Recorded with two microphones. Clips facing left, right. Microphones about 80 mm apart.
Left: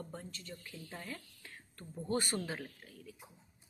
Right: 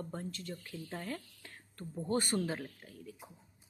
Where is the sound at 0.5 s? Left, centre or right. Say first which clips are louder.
Right 4 dB; right.